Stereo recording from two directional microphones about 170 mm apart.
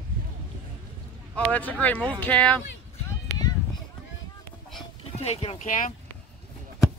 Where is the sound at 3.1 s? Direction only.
20° left (ahead or behind).